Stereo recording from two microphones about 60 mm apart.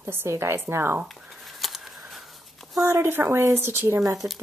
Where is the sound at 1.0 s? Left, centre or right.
Centre.